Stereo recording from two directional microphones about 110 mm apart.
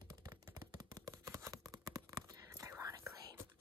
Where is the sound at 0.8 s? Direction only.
30° right (ahead or behind).